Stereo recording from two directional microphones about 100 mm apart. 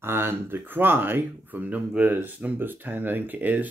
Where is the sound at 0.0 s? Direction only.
25° right (ahead or behind).